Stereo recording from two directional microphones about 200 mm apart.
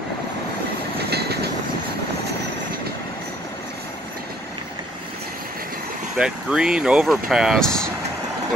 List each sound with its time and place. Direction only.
0.9 s train: 55° right (ahead or behind)
6.1 s speech: 5° right (ahead or behind)